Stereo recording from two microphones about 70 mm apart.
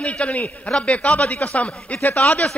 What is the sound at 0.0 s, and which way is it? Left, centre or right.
A man's voice, centre.